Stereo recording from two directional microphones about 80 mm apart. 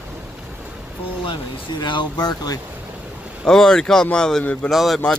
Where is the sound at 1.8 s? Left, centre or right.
Left.